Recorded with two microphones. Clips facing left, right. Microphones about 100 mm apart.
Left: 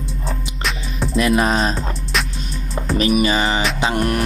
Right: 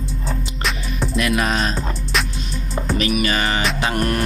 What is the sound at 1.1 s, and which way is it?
Music, 30° left (ahead or behind).